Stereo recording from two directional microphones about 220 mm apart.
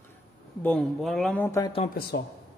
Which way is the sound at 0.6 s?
5° left (ahead or behind).